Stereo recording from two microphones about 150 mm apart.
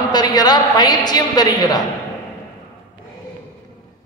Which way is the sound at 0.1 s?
25° left (ahead or behind).